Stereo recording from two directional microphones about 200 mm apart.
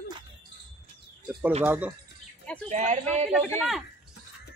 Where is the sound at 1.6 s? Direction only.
5° right (ahead or behind).